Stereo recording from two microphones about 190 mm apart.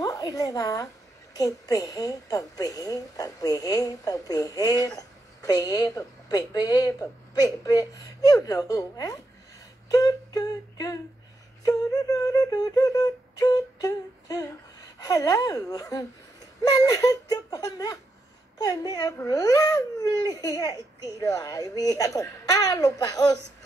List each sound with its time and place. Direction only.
0.0 s a woman's voice: 20° left (ahead or behind)
9.8 s a sound: 20° left (ahead or behind)
11.6 s beatboxing: 20° left (ahead or behind)
15.0 s a woman's voice: 20° left (ahead or behind)